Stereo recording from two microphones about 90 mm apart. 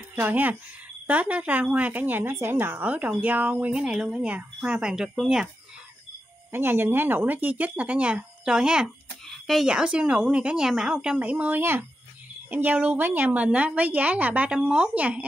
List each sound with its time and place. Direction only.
0.1 s speech: 20° right (ahead or behind)
6.5 s speech: 25° right (ahead or behind)